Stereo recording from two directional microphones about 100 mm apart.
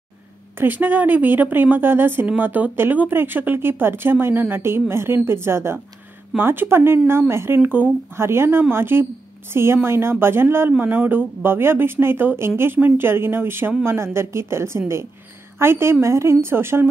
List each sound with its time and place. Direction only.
0.6 s a woman's voice: 20° right (ahead or behind)